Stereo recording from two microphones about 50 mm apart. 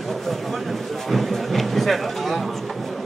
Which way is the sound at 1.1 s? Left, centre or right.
Centre.